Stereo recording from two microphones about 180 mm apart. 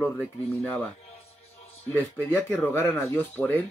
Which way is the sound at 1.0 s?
35° left (ahead or behind).